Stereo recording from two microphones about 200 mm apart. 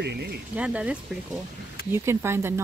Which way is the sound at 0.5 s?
5° right (ahead or behind).